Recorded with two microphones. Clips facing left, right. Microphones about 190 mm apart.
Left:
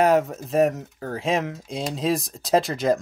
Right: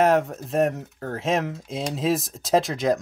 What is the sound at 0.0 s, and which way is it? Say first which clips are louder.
Speech: left 1 dB; centre (ahead or behind).